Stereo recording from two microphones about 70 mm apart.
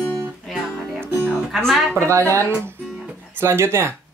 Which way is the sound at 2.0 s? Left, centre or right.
Right.